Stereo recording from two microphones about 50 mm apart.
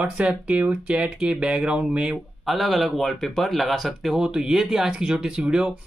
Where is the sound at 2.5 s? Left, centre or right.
Centre.